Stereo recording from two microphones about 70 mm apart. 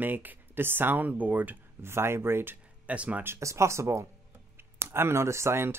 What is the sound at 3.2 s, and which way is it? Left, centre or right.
Speech, right.